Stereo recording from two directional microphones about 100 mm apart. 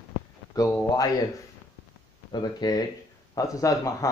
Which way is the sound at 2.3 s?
45° left (ahead or behind).